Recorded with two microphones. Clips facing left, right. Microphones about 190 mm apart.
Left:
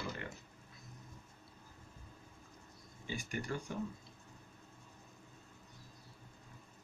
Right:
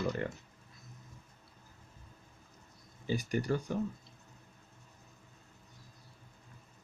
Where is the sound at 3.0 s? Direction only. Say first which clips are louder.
Right 8 dB; 40° right (ahead or behind).